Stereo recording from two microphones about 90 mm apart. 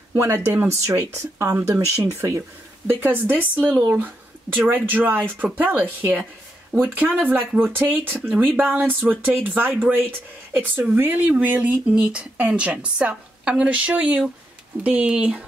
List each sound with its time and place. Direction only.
0.1 s speech: 25° right (ahead or behind); by 15.4 s 10° right (ahead or behind)